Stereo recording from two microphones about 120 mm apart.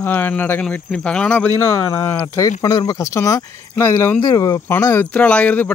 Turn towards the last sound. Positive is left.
turn(degrees=10)  # may be behind; listen again after turning